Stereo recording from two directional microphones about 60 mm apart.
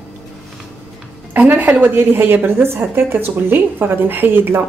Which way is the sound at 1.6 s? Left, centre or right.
Right.